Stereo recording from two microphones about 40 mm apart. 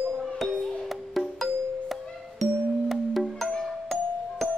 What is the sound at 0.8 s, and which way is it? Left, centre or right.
Music, centre.